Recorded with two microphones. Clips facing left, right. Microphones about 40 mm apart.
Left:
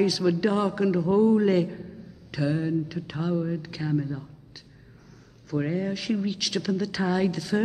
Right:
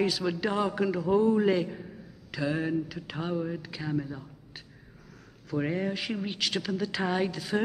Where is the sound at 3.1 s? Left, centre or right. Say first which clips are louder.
Left 4 dB; centre.